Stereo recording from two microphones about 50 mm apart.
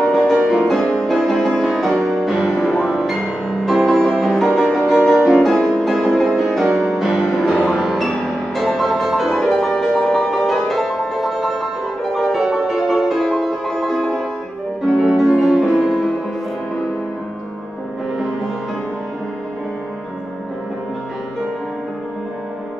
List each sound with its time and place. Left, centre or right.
0.0 s music: centre
0.7 s music: centre
1.0 s music: centre
2.5 s music: centre
5.1 s music: centre
5.4 s music: centre